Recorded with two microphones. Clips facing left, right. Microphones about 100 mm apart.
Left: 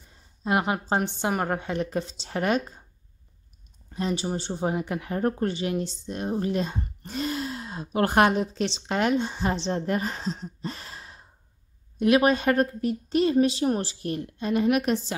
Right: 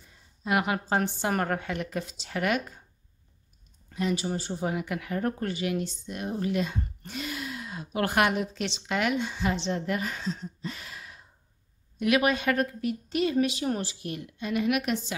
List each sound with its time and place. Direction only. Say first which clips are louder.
0.4 s a woman's voice: left 2 dB; 30° left (ahead or behind)
3.9 s speech: left 1 dB; 30° left (ahead or behind)